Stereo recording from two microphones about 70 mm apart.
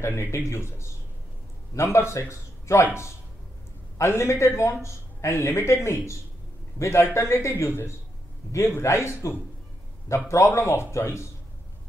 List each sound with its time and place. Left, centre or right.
0.0 s speech: left